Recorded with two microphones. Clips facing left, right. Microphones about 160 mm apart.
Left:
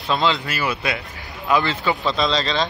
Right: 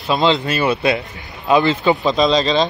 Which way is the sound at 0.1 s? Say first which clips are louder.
Right 5 dB; 20° right (ahead or behind).